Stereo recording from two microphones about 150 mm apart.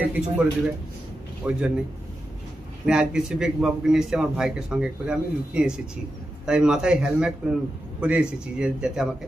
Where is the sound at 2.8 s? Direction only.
5° right (ahead or behind).